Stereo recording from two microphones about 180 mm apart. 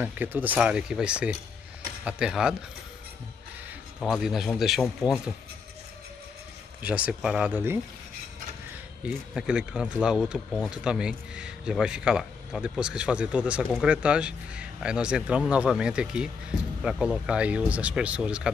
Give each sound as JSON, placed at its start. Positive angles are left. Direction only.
{"t": 0.0, "sound": "speech", "side_deg": -10}
{"t": 4.0, "sound": "speech", "side_deg": 0}
{"t": 6.8, "sound": "speech", "side_deg": -5}
{"t": 9.0, "sound": "speech", "side_deg": -5}